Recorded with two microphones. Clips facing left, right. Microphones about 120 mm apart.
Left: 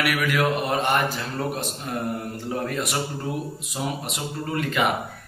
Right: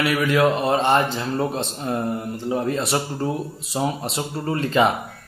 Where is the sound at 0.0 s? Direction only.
25° right (ahead or behind).